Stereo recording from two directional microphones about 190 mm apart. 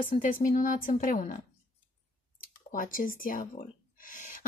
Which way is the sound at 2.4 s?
45° left (ahead or behind).